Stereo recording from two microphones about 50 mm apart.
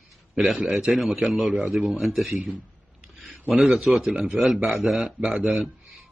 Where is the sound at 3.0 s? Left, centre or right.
Right.